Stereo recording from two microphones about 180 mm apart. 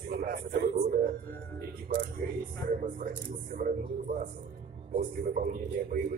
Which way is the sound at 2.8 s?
45° right (ahead or behind).